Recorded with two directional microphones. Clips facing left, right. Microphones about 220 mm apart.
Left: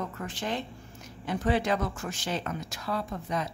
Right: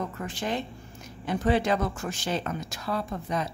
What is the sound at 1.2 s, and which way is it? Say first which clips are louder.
A woman's voice: right 3 dB; 25° right (ahead or behind).